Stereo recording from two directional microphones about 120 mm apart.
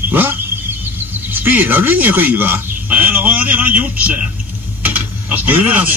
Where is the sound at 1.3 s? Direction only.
15° right (ahead or behind).